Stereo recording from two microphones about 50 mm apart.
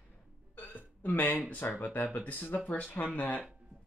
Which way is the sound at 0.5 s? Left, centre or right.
Left.